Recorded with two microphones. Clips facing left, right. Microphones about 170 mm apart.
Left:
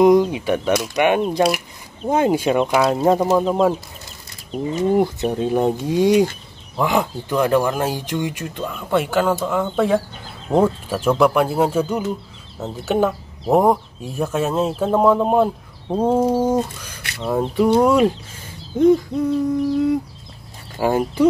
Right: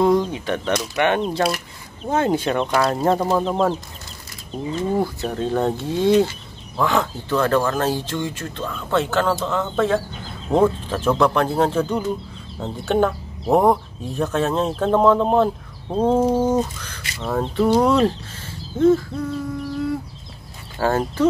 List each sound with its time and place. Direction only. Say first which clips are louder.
0.0 s speech: left 5 dB; 10° left (ahead or behind)
4.5 s speech: left 4 dB; 15° left (ahead or behind)